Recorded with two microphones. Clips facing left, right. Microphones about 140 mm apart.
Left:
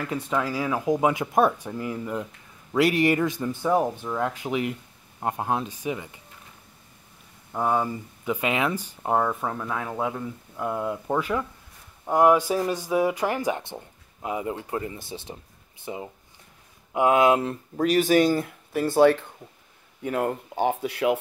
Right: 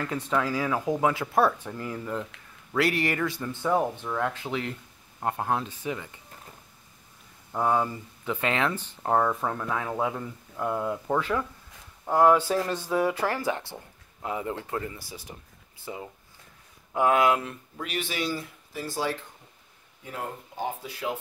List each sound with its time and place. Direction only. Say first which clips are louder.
0.0 s speech: left 1 dB; 10° left (ahead or behind)
7.5 s speech: left 1 dB; 5° left (ahead or behind); by 19.2 s 60° left (ahead or behind)
20.0 s speech: left 10 dB; 75° left (ahead or behind)